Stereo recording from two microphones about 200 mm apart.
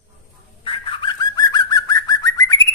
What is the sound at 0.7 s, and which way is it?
Bird, 25° left (ahead or behind).